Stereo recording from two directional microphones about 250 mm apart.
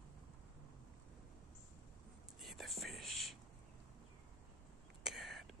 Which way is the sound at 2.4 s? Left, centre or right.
Centre.